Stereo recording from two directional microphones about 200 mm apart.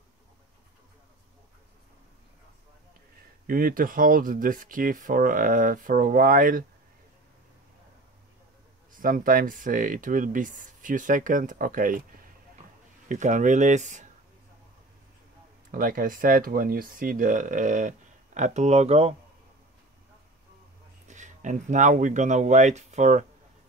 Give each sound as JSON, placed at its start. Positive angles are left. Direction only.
{"t": 3.4, "sound": "speech", "side_deg": -45}
{"t": 8.9, "sound": "speech", "side_deg": -45}
{"t": 15.7, "sound": "speech", "side_deg": -45}
{"t": 21.1, "sound": "speech", "side_deg": -40}